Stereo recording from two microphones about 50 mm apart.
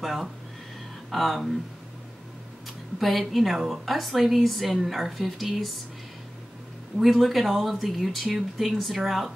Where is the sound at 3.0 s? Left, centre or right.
Centre.